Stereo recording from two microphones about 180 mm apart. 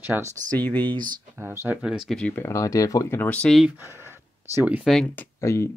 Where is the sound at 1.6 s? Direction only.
5° right (ahead or behind).